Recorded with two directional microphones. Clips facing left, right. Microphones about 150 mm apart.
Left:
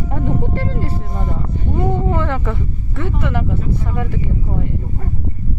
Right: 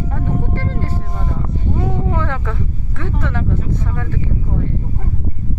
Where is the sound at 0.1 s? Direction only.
15° left (ahead or behind).